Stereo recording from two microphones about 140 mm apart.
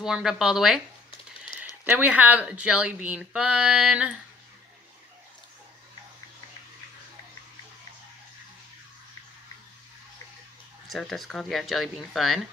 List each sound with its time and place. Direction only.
0.0 s speech: 5° right (ahead or behind)
1.5 s a sound: 35° left (ahead or behind)
1.9 s speech: 10° right (ahead or behind)
10.9 s speech: centre (ahead or behind)